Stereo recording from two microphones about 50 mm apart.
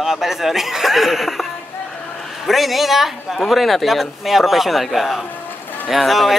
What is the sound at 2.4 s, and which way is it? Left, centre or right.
Speech, centre.